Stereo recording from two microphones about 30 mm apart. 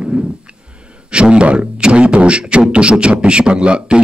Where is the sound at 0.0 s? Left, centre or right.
Right.